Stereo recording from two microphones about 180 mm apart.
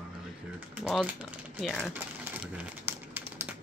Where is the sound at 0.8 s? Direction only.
Centre (ahead or behind).